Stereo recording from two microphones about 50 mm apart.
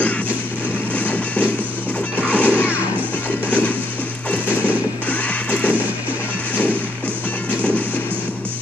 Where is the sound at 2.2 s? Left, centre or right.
Left.